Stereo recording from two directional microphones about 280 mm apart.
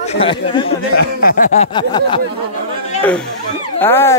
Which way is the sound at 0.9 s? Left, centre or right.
Left.